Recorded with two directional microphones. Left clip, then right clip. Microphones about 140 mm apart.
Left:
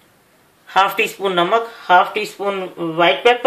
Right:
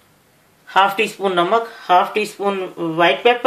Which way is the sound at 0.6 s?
45° right (ahead or behind).